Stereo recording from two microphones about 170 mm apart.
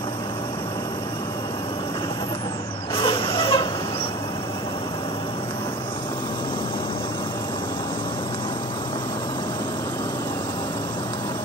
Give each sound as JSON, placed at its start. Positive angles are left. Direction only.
{"t": 3.0, "sound": "vehicle", "side_deg": 30}